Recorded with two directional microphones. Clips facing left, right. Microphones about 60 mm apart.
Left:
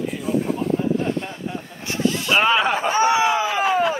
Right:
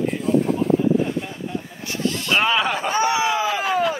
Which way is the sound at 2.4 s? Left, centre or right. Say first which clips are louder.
Left 3 dB; left.